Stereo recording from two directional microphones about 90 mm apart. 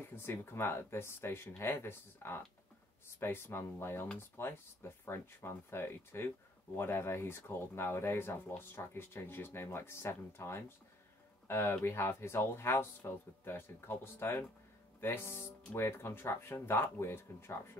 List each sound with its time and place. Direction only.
0.1 s speech: 25° left (ahead or behind)